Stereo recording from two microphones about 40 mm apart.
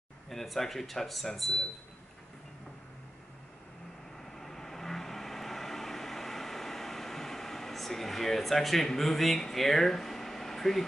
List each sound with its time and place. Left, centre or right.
0.3 s speech: centre
4.2 s vehicle: centre